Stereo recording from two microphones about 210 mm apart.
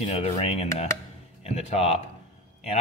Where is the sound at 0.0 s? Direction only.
30° left (ahead or behind).